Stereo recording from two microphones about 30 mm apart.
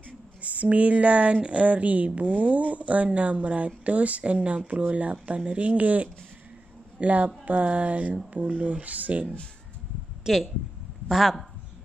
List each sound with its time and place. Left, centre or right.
0.4 s speech: right
1.7 s speech: right
10.2 s speech: centre